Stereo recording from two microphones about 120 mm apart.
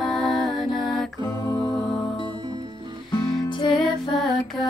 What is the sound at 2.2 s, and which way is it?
Music, 40° right (ahead or behind).